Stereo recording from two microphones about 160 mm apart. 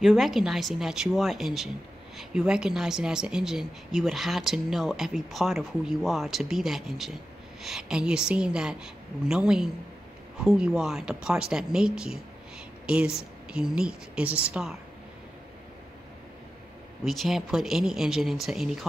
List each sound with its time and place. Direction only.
0.0 s a woman's voice: centre (ahead or behind)
17.0 s a woman's voice: centre (ahead or behind)